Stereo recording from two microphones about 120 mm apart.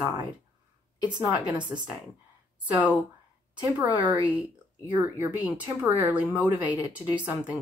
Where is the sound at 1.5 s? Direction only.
40° right (ahead or behind).